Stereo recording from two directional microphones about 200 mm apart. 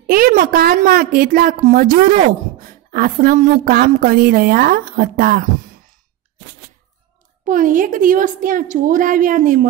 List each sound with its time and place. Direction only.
0.0 s a woman's voice: 45° right (ahead or behind)
7.4 s a woman's voice: 40° right (ahead or behind)